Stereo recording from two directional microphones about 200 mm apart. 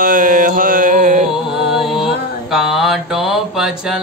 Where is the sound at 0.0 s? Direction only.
45° right (ahead or behind).